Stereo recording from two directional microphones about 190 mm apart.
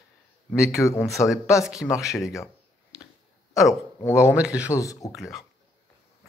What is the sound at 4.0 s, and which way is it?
Speech, 15° left (ahead or behind).